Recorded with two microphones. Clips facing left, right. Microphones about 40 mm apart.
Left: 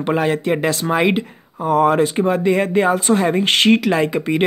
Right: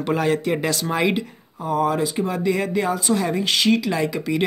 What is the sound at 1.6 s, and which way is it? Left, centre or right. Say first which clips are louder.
Speech: left 6 dB; left.